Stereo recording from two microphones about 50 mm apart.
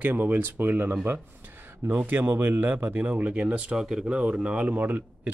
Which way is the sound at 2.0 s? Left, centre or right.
Right.